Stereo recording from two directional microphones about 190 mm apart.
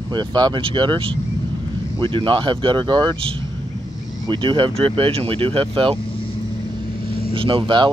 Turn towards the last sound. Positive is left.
turn(degrees=-25)  # may be behind; listen again after turning